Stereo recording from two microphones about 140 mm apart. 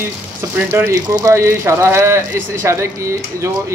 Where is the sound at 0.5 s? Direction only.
15° right (ahead or behind).